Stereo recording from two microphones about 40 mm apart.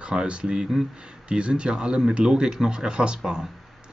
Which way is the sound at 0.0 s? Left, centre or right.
Right.